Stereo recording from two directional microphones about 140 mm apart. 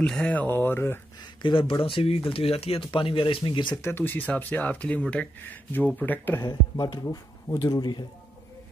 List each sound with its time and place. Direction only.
0.0 s speech: 5° left (ahead or behind)
1.4 s speech: 35° left (ahead or behind)
3.7 s speech: 20° left (ahead or behind)
6.8 s speech: 30° left (ahead or behind)